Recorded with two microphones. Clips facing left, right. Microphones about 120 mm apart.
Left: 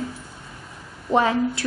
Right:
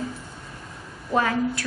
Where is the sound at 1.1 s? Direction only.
25° left (ahead or behind).